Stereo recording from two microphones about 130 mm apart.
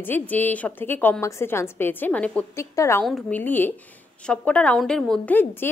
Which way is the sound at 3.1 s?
10° left (ahead or behind).